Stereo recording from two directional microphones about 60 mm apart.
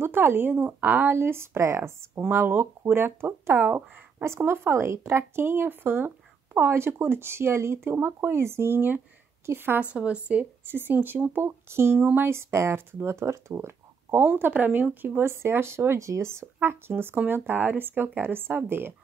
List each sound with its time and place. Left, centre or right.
0.0 s speech: right
1.1 s speech: right
3.5 s speech: right
4.4 s speech: right
9.9 s speech: right
10.7 s speech: right
14.2 s speech: right
16.0 s speech: right